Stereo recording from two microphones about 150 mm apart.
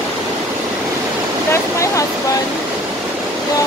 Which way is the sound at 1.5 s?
20° left (ahead or behind).